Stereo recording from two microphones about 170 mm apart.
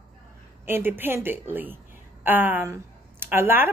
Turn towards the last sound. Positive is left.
turn(degrees=-10)  # may be behind; listen again after turning